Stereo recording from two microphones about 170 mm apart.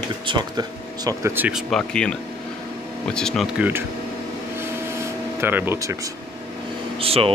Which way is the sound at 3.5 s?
10° right (ahead or behind).